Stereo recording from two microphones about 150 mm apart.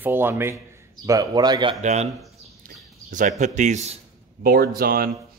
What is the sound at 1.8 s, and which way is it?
A man's voice, 50° right (ahead or behind).